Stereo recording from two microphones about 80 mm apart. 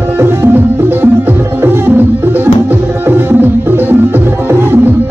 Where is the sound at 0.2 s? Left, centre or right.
Right.